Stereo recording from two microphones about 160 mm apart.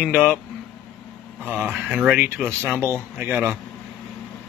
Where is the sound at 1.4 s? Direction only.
10° right (ahead or behind).